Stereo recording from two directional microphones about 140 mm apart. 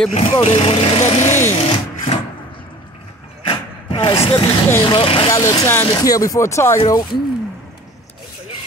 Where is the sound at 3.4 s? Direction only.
40° left (ahead or behind).